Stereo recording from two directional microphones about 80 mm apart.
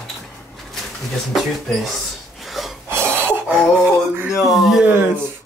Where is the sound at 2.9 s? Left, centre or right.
Right.